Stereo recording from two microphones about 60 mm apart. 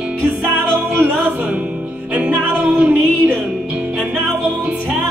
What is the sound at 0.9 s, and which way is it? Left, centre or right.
Music, right.